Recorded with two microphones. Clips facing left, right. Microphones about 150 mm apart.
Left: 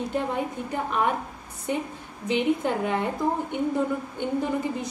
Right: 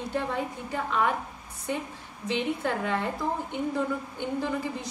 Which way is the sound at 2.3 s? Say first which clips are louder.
Left 5 dB; 15° left (ahead or behind).